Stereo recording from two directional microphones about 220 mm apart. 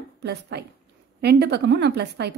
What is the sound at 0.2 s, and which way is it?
A woman's voice, 50° right (ahead or behind).